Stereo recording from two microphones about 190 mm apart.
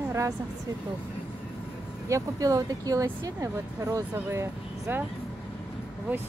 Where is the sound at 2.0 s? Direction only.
15° right (ahead or behind).